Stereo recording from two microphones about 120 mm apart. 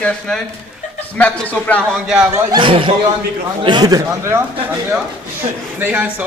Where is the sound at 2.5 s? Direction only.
40° right (ahead or behind); by 4.4 s 25° right (ahead or behind).